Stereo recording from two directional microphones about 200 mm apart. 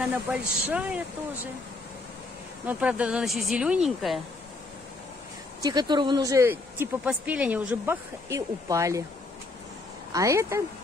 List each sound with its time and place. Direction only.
0.0 s speech: 5° right (ahead or behind)
2.6 s speech: 5° right (ahead or behind)
5.6 s speech: 20° right (ahead or behind)
10.1 s speech: 15° right (ahead or behind)